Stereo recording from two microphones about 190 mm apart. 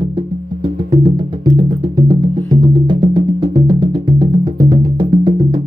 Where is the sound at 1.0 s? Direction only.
25° right (ahead or behind).